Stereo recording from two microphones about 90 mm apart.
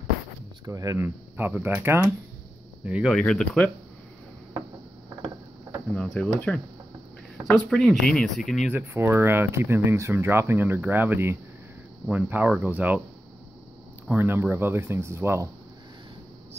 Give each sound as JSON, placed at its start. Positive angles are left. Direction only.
{"t": 0.7, "sound": "speech", "side_deg": -40}
{"t": 0.9, "sound": "speech", "side_deg": -25}
{"t": 2.8, "sound": "speech", "side_deg": -15}
{"t": 3.1, "sound": "speech", "side_deg": 10}
{"t": 5.9, "sound": "speech", "side_deg": 10}
{"t": 8.9, "sound": "speech", "side_deg": -25}
{"t": 14.1, "sound": "speech", "side_deg": -20}